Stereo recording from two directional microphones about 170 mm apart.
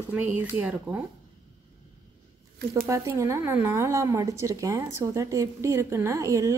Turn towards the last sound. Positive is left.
turn(degrees=-20)  # may be behind; listen again after turning